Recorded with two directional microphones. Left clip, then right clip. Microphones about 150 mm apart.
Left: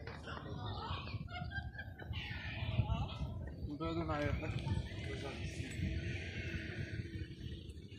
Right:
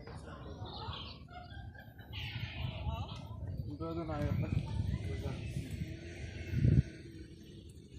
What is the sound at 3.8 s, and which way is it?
Speech, 25° left (ahead or behind).